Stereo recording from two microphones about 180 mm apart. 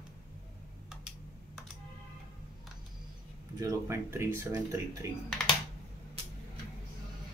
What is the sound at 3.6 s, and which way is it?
Speech, 15° right (ahead or behind).